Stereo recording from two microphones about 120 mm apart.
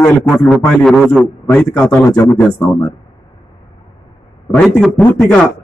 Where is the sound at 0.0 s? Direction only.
15° left (ahead or behind).